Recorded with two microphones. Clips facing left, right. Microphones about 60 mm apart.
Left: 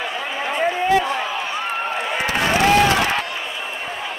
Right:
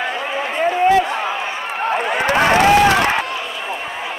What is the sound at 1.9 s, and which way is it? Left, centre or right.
Run, right.